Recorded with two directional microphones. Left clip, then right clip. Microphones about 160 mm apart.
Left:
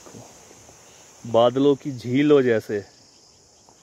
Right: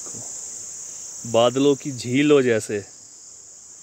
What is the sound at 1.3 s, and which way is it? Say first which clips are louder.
Cricket: even; 20° right (ahead or behind).